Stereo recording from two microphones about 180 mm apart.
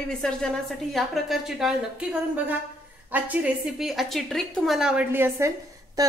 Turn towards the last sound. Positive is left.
turn(degrees=-20)  # may be behind; listen again after turning